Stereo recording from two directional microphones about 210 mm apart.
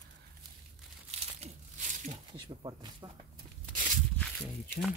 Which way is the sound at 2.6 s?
20° right (ahead or behind).